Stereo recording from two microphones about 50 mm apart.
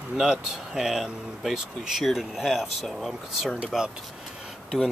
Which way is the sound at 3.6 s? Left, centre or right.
Centre.